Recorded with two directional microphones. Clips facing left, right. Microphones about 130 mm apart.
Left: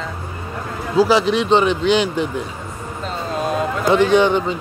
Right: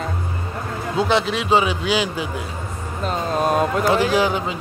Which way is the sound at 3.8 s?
5° right (ahead or behind).